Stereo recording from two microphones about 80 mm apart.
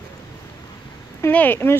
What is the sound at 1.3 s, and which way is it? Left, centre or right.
Speech, left.